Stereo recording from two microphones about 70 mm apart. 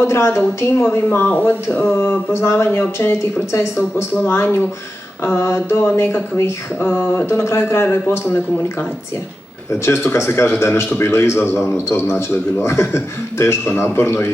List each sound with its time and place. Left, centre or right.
0.0 s a man's voice: left
1.1 s speech: left
2.4 s a man's voice: left
6.8 s speech: left
7.2 s a man's voice: left
9.8 s a man's voice: left